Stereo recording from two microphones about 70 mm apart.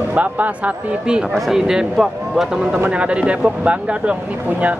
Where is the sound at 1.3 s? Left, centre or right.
Centre.